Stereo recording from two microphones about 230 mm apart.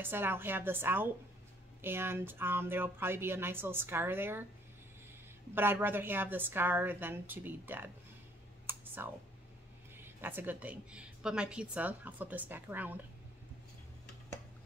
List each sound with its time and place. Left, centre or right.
0.0 s a woman's voice: centre
5.5 s a woman's voice: centre
8.6 s clicking: centre
10.0 s a woman's voice: centre